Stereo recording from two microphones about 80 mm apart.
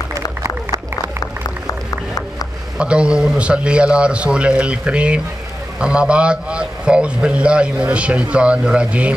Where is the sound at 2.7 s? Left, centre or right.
Centre.